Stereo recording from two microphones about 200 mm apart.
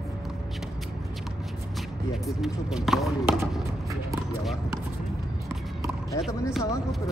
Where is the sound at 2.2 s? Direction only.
Centre (ahead or behind).